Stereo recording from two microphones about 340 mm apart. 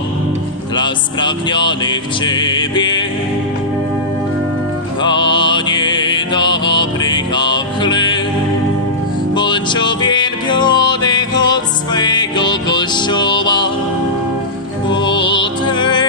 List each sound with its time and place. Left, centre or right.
0.7 s music: centre
5.0 s music: centre
9.3 s music: centre
15.0 s music: centre